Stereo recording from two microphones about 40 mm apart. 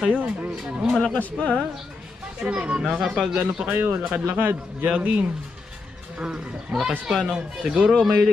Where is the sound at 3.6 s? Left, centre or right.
Right.